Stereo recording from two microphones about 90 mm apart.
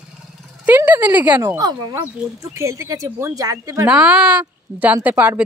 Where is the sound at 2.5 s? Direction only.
35° right (ahead or behind).